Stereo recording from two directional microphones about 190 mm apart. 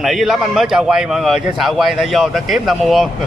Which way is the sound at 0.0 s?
Centre (ahead or behind).